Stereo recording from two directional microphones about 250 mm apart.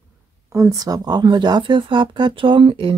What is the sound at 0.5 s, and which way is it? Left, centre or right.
Speech, centre.